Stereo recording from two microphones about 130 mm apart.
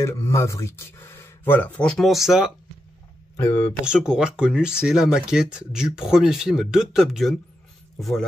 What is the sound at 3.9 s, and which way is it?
Speech, 5° right (ahead or behind).